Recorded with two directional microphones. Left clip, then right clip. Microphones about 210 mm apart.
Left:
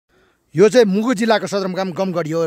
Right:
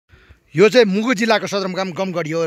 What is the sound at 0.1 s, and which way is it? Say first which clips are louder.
Speech: right 1 dB; 10° left (ahead or behind).